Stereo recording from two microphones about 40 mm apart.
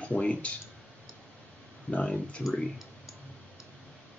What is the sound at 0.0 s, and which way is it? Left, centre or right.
Speech, left.